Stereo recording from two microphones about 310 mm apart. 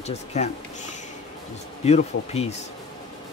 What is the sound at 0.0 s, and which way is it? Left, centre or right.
Speech, left.